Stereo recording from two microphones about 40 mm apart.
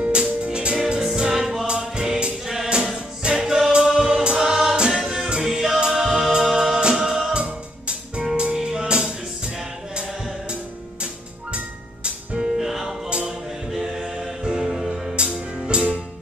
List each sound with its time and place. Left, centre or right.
0.0 s music: right
0.9 s music: centre
1.7 s music: right
2.4 s music: centre
6.8 s music: right
7.1 s music: centre
8.2 s music: right
11.5 s music: right
12.5 s music: centre
14.6 s music: centre
15.2 s music: right